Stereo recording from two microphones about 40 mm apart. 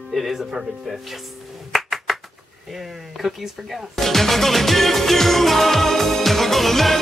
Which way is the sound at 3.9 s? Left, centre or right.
Centre.